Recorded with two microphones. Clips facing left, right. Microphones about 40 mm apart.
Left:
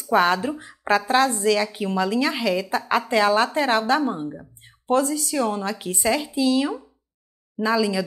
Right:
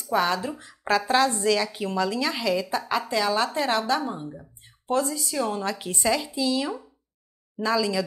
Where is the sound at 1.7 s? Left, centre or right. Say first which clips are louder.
Left 3 dB; centre; by 5.2 s left.